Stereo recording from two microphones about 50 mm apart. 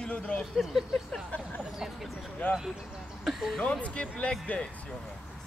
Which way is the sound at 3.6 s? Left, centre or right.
Left.